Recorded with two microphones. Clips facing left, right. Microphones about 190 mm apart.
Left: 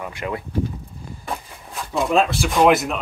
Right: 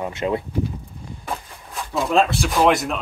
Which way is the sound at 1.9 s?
Centre (ahead or behind).